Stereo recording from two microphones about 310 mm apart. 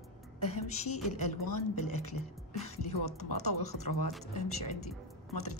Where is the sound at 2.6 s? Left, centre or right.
Left.